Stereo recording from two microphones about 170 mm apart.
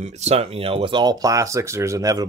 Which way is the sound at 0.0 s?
40° right (ahead or behind).